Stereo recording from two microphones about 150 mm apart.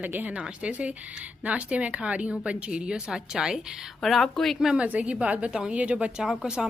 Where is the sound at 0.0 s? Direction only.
10° right (ahead or behind).